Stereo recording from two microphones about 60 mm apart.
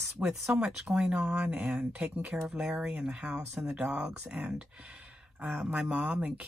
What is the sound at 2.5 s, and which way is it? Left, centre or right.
A woman's voice, centre.